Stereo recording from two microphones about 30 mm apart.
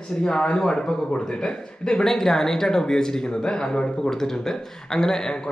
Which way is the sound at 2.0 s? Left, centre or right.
Centre.